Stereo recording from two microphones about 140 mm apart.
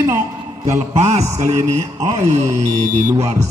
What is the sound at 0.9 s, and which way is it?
A man's voice, 50° right (ahead or behind).